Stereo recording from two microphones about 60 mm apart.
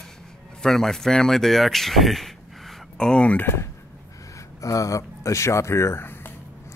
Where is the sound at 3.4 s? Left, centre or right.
Left.